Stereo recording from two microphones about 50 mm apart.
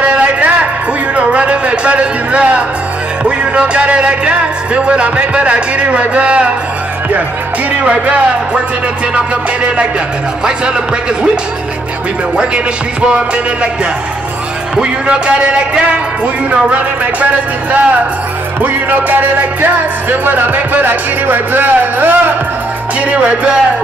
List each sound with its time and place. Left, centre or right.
0.0 s a sound: right
1.1 s music: right
7.8 s music: right
10.4 s music: centre
12.4 s music: right
14.8 s music: centre